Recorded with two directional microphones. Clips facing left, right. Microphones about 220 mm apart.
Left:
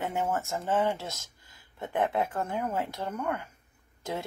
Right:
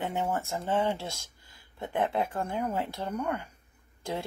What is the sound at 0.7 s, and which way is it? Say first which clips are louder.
Speech: left 1 dB; 25° right (ahead or behind).